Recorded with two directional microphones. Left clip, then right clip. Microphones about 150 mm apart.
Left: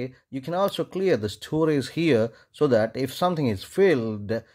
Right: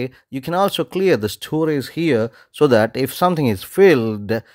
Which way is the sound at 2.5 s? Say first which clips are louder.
Right 8 dB; 30° right (ahead or behind).